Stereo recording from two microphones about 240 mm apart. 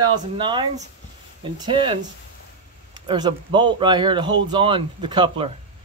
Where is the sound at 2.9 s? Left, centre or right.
Centre.